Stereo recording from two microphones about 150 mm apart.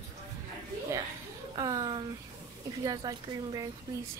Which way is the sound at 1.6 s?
25° right (ahead or behind).